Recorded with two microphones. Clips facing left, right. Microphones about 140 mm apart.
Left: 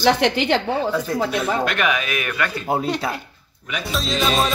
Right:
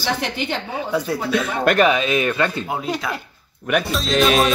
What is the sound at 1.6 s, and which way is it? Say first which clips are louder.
Speech: right 6 dB; 35° right (ahead or behind).